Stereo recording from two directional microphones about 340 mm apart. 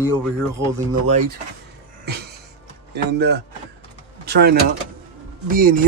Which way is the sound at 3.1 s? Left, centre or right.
Right.